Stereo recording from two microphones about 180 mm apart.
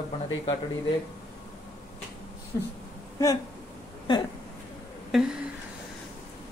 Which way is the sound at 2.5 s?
15° left (ahead or behind).